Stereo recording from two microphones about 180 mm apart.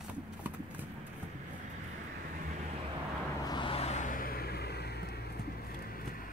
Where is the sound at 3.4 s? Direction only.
25° left (ahead or behind); by 6.3 s 55° left (ahead or behind).